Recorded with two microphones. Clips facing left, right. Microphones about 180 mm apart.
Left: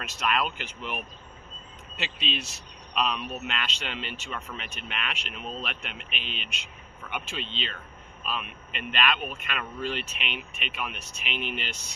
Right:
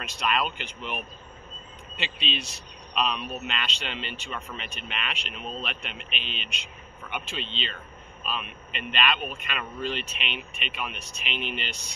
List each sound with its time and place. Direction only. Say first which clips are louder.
0.0 s speech: even; 5° left (ahead or behind)
6.3 s a man's voice: right 1 dB; 50° left (ahead or behind)
7.1 s a man's voice: right 1 dB; 5° left (ahead or behind)